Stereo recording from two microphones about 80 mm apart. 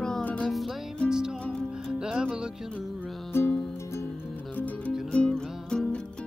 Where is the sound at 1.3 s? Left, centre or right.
Centre.